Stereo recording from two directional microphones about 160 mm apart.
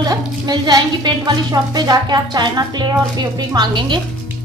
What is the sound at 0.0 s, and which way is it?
A woman's voice, 25° right (ahead or behind).